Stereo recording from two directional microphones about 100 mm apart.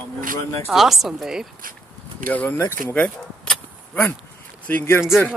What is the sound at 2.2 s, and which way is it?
Speech, 15° left (ahead or behind).